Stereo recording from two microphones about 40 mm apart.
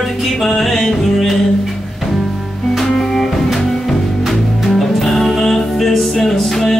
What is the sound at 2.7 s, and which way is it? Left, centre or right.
Music, centre.